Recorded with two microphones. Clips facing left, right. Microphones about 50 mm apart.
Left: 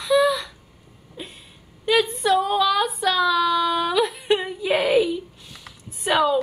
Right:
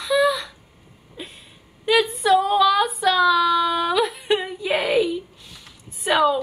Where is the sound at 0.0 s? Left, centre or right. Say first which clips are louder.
Left 1 dB; centre.